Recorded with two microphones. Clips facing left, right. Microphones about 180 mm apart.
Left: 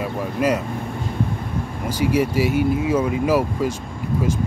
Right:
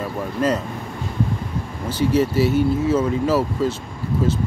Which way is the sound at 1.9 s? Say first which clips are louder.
Right 1 dB; 10° left (ahead or behind).